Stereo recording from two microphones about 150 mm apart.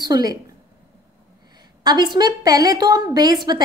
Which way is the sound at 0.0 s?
25° right (ahead or behind).